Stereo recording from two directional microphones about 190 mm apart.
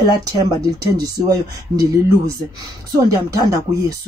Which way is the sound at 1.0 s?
20° right (ahead or behind).